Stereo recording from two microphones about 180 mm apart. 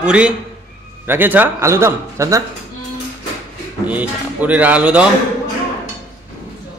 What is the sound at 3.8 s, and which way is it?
A man's voice, 10° right (ahead or behind).